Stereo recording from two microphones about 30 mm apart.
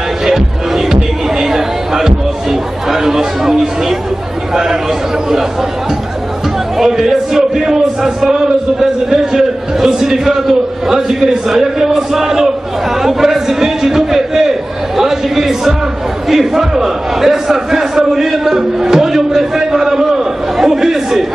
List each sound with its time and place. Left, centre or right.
0.2 s music: centre
1.4 s chatter: centre
6.8 s a man's voice: centre
13.0 s a sound: centre
15.0 s a man's voice: centre
16.3 s a sound: centre